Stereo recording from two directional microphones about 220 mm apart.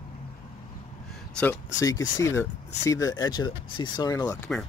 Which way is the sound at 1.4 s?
10° left (ahead or behind).